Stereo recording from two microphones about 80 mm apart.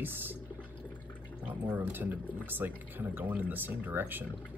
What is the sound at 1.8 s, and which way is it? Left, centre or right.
Speech, right.